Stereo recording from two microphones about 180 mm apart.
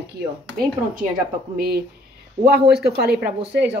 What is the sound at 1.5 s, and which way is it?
A woman's voice, 60° right (ahead or behind).